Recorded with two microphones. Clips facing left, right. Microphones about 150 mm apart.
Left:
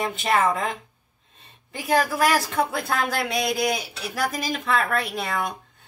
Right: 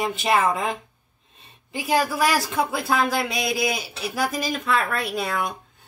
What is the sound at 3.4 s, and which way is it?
Speech, 45° left (ahead or behind).